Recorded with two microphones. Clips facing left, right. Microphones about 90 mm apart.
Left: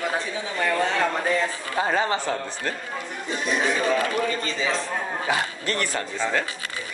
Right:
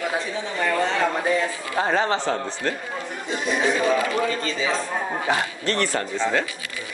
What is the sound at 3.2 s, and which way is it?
A man's voice, 20° right (ahead or behind).